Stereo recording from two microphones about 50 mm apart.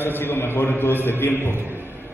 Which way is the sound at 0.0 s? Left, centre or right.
Left.